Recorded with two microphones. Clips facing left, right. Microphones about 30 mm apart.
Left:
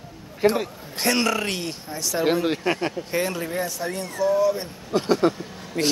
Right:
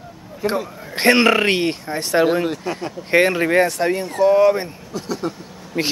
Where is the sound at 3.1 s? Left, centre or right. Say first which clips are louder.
Right 13 dB; right.